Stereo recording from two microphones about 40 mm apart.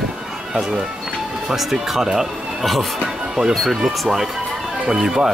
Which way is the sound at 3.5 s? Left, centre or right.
Centre.